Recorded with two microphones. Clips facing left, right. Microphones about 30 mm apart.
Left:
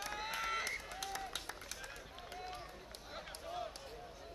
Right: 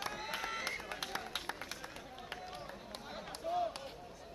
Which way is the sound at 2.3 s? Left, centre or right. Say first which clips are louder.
Left 1 dB; centre.